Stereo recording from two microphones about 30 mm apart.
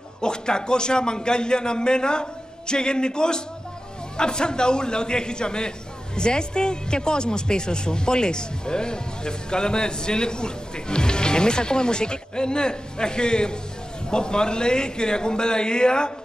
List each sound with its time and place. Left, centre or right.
0.2 s speech: left